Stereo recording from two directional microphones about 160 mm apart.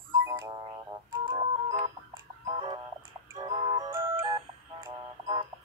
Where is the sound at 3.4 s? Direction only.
25° right (ahead or behind).